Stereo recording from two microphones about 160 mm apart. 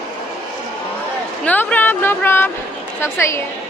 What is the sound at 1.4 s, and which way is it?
Speech, 10° left (ahead or behind).